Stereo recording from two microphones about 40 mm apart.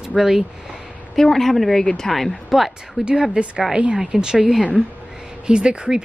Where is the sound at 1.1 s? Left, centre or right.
Centre.